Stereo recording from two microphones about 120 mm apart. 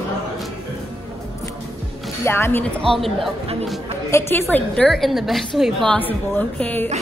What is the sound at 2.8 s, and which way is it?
Speech, centre (ahead or behind).